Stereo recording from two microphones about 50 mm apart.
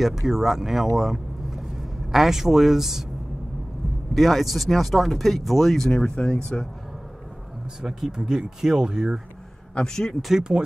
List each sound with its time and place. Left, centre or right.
0.0 s speech: centre
0.9 s vehicle: centre
2.1 s speech: centre
4.1 s speech: centre
5.9 s speech: centre
7.8 s speech: centre
9.8 s speech: centre
10.5 s speech: centre